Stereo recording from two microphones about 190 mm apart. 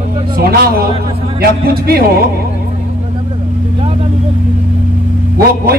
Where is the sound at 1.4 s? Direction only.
55° right (ahead or behind).